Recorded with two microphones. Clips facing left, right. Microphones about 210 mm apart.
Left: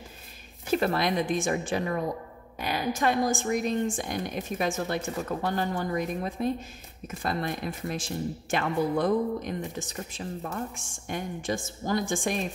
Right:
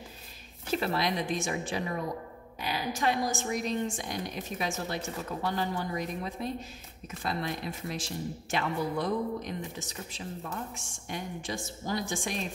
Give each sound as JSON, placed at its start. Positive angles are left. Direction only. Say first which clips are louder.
{"t": 0.7, "sound": "a woman's voice", "louder": "left 4 dB", "side_deg": 50}